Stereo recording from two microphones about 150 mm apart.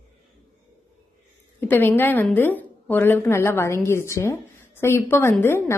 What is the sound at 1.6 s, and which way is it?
A woman's voice, 15° left (ahead or behind).